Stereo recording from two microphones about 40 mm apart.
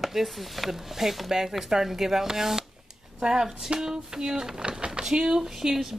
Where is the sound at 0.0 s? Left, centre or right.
Centre.